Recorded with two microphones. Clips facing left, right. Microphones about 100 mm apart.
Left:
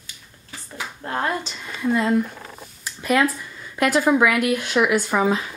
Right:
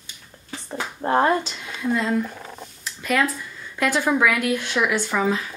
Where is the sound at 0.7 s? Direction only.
25° right (ahead or behind).